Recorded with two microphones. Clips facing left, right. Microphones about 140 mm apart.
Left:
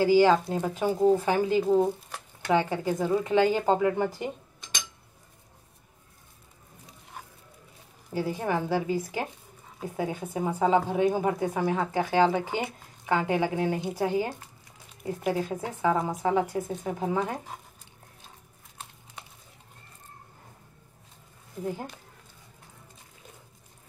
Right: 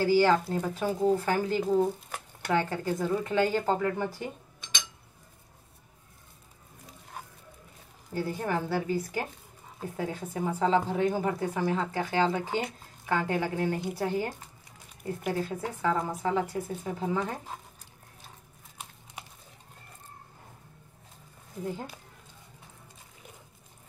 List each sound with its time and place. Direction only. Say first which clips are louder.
0.0 s a woman's voice: left 3 dB; 15° left (ahead or behind)
8.1 s a woman's voice: left 2 dB; 15° left (ahead or behind)